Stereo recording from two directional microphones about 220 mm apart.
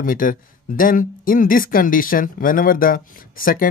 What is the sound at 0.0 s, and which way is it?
Speech, 40° left (ahead or behind).